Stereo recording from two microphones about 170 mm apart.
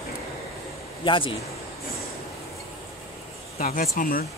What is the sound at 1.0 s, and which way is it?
Speech, 30° left (ahead or behind).